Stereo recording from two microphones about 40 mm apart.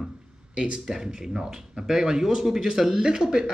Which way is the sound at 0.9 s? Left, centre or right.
Centre.